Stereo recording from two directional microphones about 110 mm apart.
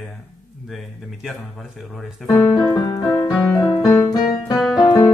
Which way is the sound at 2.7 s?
35° left (ahead or behind).